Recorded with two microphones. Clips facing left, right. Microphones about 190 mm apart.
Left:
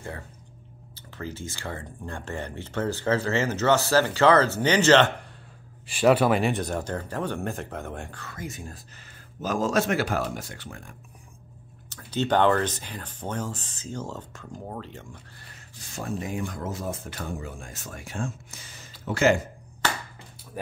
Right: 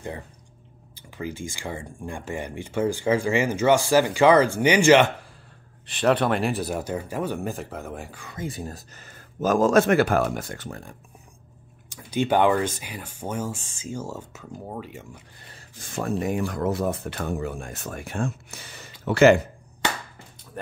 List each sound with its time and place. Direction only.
0.9 s speech: 15° right (ahead or behind)
5.9 s speech: 5° left (ahead or behind); by 8.4 s 10° right (ahead or behind)
8.4 s speech: 35° right (ahead or behind)
9.4 s speech: 50° right (ahead or behind)
11.9 s speech: 10° right (ahead or behind)
15.8 s speech: 55° right (ahead or behind)